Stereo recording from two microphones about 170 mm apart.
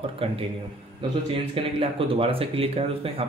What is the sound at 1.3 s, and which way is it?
Speech, 30° right (ahead or behind).